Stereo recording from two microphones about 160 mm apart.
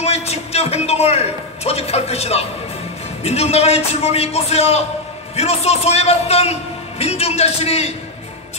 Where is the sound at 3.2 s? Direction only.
40° left (ahead or behind).